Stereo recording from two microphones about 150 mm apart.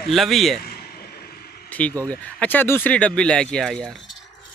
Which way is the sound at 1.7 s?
10° left (ahead or behind).